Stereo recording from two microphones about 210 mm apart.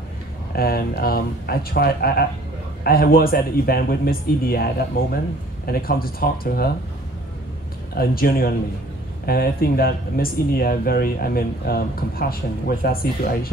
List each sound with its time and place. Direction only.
0.5 s speech: 45° left (ahead or behind)
7.9 s speech: 45° left (ahead or behind)